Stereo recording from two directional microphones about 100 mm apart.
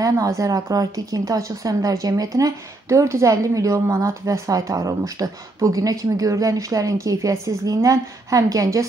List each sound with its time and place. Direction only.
0.0 s speech: 35° right (ahead or behind)